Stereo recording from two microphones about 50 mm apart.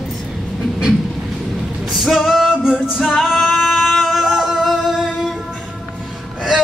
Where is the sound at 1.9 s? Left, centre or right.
Centre.